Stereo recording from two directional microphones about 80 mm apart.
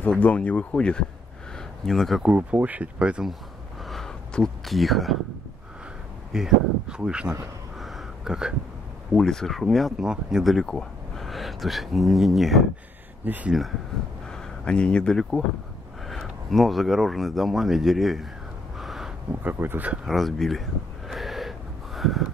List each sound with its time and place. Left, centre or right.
0.2 s speech: centre
2.2 s speech: centre
3.9 s a sound: centre
6.3 s speech: centre
7.8 s a sound: centre
9.1 s speech: centre
13.2 s speech: right
13.5 s speech: centre
14.3 s speech: centre
18.8 s a sound: centre
19.4 s speech: right
20.1 s speech: centre
21.1 s gasp: centre